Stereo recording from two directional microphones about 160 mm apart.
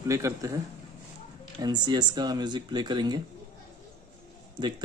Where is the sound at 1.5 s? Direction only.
25° right (ahead or behind).